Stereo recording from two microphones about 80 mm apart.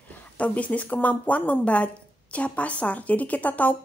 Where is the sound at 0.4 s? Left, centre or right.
Centre.